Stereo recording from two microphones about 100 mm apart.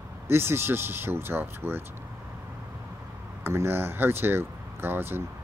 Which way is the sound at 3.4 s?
25° right (ahead or behind).